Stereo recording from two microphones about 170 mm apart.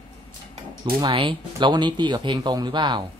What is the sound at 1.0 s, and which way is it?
Speech, 30° right (ahead or behind).